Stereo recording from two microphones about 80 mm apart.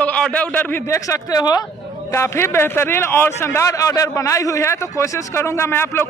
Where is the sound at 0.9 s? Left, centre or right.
Left.